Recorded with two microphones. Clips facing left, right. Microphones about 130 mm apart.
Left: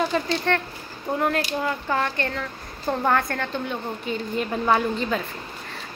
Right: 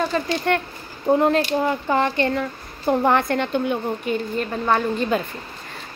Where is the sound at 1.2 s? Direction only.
25° right (ahead or behind).